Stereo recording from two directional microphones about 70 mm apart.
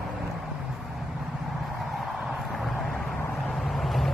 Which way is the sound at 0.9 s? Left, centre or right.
Centre.